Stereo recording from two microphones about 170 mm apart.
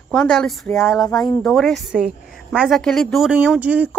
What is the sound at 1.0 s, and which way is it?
Speech, 20° left (ahead or behind).